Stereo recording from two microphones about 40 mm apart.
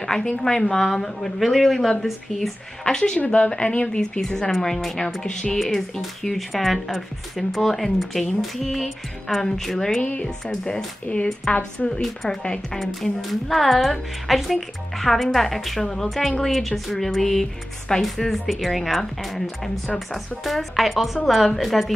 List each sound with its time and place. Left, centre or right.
0.0 s a sound: centre
0.4 s a woman's voice: centre
2.8 s a woman's voice: left
3.2 s a woman's voice: left; by 10.0 s centre
11.1 s speech: left
12.0 s a woman's voice: centre